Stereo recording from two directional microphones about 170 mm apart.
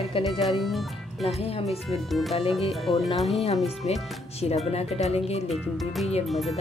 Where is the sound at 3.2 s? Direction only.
35° left (ahead or behind).